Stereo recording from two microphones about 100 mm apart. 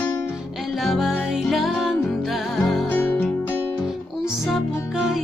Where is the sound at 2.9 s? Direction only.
20° left (ahead or behind).